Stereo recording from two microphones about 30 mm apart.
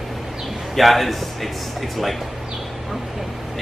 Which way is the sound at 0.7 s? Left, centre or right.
Centre.